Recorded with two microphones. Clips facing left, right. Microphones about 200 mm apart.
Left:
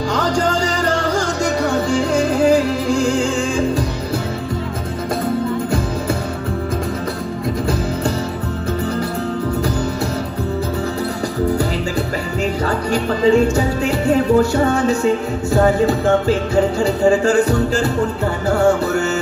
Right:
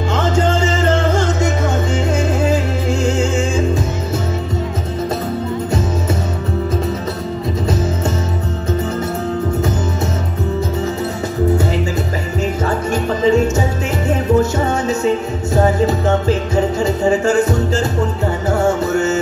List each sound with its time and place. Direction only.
0.1 s music: 25° right (ahead or behind)
12.9 s music: 25° right (ahead or behind)